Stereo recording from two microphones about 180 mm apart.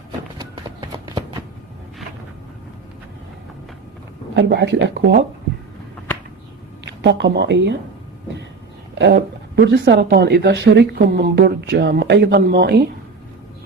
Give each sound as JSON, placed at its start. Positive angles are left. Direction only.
{"t": 0.4, "sound": "clip-clop", "side_deg": -25}
{"t": 4.3, "sound": "speech", "side_deg": -70}
{"t": 6.9, "sound": "speech", "side_deg": -75}
{"t": 8.9, "sound": "speech", "side_deg": -75}
{"t": 9.7, "sound": "speech", "side_deg": -65}